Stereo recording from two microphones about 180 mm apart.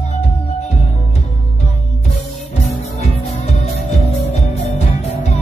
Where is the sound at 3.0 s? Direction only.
35° left (ahead or behind).